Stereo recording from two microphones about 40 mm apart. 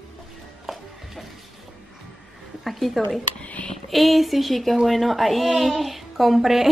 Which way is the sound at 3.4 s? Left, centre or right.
Left.